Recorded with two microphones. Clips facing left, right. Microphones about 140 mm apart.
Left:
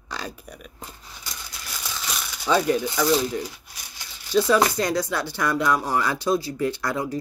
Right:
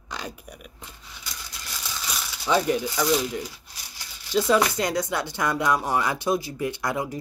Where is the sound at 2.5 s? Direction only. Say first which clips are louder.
Left 1 dB; 20° right (ahead or behind).